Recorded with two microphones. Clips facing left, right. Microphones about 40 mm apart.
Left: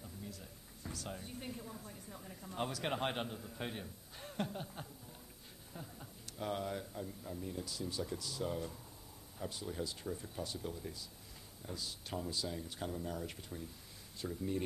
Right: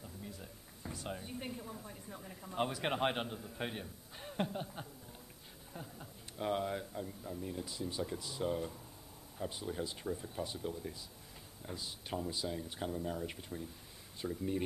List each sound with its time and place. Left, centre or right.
0.9 s a man's voice: centre
3.8 s a sound: centre
4.4 s a man's voice: centre
7.9 s a man's voice: centre
9.4 s speech: right
10.0 s a man's voice: centre
10.6 s a man's voice: centre
11.6 s a man's voice: centre